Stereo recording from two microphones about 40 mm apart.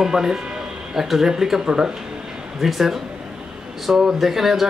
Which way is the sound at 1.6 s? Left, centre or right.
Right.